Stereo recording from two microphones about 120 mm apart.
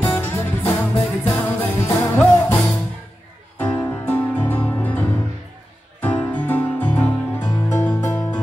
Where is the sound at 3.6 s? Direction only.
15° left (ahead or behind).